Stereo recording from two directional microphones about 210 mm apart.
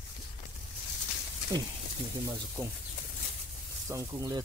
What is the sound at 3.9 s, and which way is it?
Speech, 15° right (ahead or behind).